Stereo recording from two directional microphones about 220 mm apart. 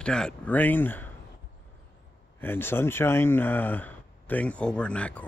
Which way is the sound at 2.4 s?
10° left (ahead or behind).